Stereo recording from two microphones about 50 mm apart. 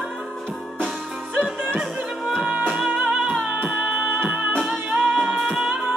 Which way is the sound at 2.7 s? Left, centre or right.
Centre.